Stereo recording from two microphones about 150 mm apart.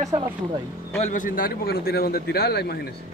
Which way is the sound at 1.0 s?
60° left (ahead or behind).